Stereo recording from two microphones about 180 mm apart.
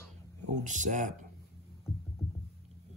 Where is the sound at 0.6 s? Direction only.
45° right (ahead or behind).